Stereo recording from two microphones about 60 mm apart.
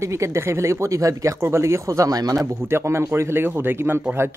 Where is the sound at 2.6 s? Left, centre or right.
Right.